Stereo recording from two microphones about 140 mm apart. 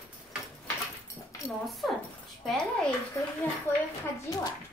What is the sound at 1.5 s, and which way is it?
A woman's voice, centre (ahead or behind).